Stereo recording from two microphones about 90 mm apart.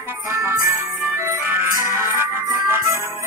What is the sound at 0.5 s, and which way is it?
Jingle bell, 40° right (ahead or behind).